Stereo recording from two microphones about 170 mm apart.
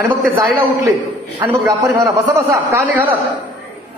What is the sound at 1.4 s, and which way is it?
A man's voice, 15° right (ahead or behind).